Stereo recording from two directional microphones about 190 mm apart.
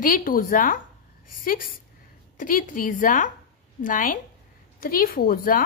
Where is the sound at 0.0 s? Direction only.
45° left (ahead or behind).